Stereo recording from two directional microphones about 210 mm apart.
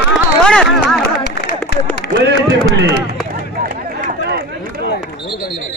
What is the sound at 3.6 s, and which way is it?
Run, 40° right (ahead or behind).